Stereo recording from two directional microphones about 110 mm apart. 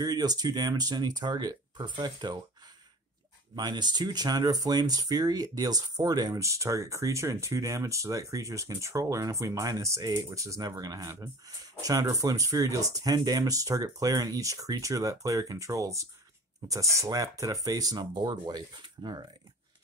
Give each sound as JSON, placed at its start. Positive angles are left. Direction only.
{"t": 0.0, "sound": "speech", "side_deg": -35}
{"t": 3.5, "sound": "speech", "side_deg": -40}